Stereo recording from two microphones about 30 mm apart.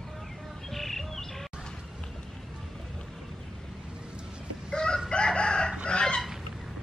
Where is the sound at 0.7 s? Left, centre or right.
Centre.